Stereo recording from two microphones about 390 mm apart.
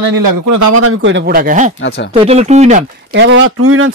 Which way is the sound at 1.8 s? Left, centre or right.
Left.